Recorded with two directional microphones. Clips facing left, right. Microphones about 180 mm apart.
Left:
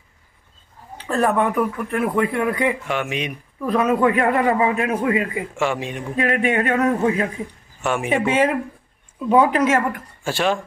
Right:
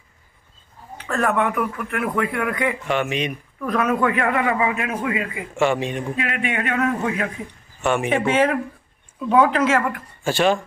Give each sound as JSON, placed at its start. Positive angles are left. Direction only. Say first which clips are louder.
{"t": 0.9, "sound": "speech", "louder": "left 2 dB", "side_deg": 30}
{"t": 2.9, "sound": "speech", "louder": "right 2 dB", "side_deg": 10}
{"t": 3.6, "sound": "speech", "louder": "left 3 dB", "side_deg": 25}
{"t": 4.1, "sound": "a man's voice", "louder": "left 3 dB", "side_deg": 35}
{"t": 5.6, "sound": "speech", "louder": "right 4 dB", "side_deg": 5}
{"t": 6.1, "sound": "a man's voice", "louder": "left 5 dB", "side_deg": 40}
{"t": 7.8, "sound": "speech", "louder": "right 1 dB", "side_deg": 0}
{"t": 9.3, "sound": "speech", "louder": "left 1 dB", "side_deg": 20}
{"t": 10.2, "sound": "speech", "louder": "right 2 dB", "side_deg": 0}